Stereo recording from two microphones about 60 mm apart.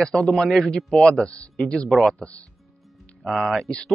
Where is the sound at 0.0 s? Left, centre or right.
Centre.